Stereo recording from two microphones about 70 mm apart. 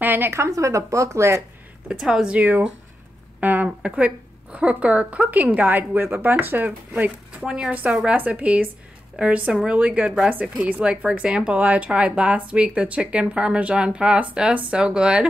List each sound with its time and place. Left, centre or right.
0.0 s a woman's voice: right
0.4 s speech: right
1.9 s speech: centre